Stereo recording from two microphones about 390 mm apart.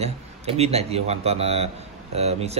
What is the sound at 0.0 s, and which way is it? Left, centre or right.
Speech, centre.